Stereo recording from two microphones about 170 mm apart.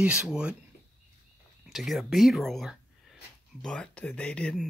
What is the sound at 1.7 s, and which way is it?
Speech, centre (ahead or behind).